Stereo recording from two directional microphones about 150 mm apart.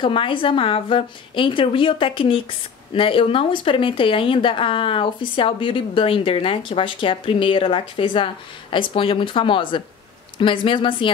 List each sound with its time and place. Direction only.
0.0 s speech: 35° left (ahead or behind)